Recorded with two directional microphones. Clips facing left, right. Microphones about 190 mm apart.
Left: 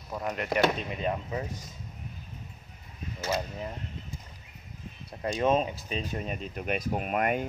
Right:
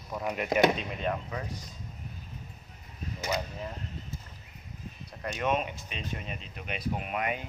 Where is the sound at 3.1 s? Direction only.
15° right (ahead or behind).